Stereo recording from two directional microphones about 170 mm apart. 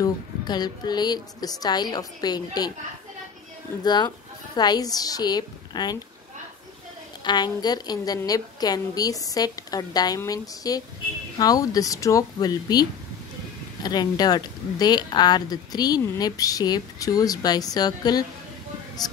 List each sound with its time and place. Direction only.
0.0 s speech: 25° left (ahead or behind)
3.8 s speech: 25° left (ahead or behind)
7.2 s speech: 25° left (ahead or behind)
13.8 s speech: 25° left (ahead or behind)